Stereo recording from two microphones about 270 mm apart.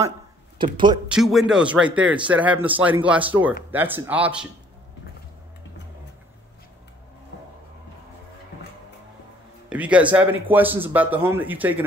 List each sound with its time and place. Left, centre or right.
0.6 s a man's voice: centre
1.0 s a man's voice: centre
9.7 s a man's voice: centre